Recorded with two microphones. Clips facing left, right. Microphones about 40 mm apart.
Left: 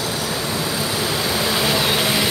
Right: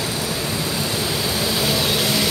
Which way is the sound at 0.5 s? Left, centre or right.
Centre.